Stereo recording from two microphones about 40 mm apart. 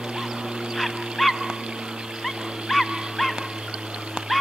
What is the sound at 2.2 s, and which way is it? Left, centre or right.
Dog, centre.